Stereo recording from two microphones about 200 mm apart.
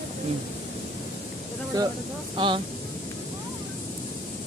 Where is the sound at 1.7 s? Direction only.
15° right (ahead or behind).